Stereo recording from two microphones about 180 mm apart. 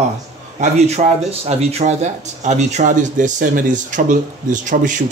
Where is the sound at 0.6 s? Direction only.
35° right (ahead or behind).